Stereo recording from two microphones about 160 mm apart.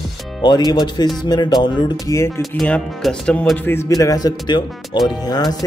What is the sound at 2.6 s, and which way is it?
Speech, 5° left (ahead or behind).